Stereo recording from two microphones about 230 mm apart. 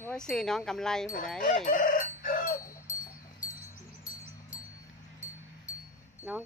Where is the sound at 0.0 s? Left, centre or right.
Centre.